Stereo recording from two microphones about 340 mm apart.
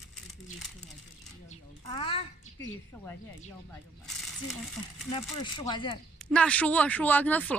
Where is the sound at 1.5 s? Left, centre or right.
Centre.